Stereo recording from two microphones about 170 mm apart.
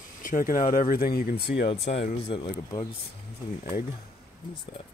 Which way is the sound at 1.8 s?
90° left.